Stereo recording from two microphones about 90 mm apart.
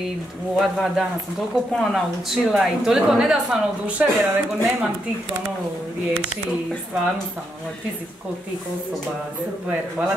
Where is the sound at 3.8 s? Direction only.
25° right (ahead or behind).